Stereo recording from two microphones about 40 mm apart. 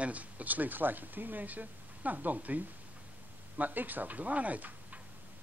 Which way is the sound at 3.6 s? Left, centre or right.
Right.